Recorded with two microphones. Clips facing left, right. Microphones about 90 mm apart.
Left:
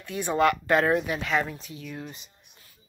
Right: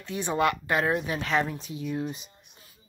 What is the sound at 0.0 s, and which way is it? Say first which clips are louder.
A woman's voice: left 2 dB; 25° right (ahead or behind).